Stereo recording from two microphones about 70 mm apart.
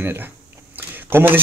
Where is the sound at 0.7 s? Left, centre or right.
Right.